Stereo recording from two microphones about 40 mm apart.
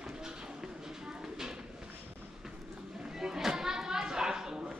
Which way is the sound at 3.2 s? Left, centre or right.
Centre.